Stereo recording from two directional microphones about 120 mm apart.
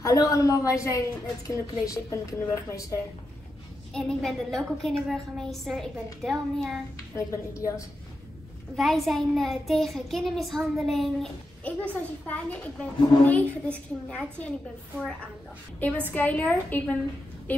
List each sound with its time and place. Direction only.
0.0 s a woman's voice: 25° left (ahead or behind)
3.9 s a child's voice: 5° left (ahead or behind)
7.2 s a woman's voice: 25° left (ahead or behind)
8.7 s a child's voice: centre (ahead or behind)
11.6 s a woman's voice: 10° left (ahead or behind)
16.1 s a woman's voice: 15° left (ahead or behind)